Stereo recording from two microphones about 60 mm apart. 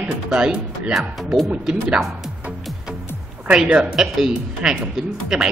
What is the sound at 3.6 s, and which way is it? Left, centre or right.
Speech, centre.